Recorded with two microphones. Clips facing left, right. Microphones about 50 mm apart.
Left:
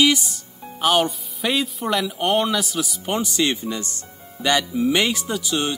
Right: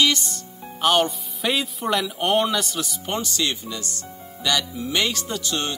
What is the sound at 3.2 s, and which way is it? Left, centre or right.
Speech, centre.